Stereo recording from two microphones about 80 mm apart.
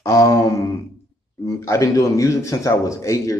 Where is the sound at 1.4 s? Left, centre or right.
Left.